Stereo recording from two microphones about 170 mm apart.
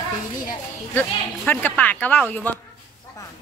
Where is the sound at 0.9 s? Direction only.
10° left (ahead or behind).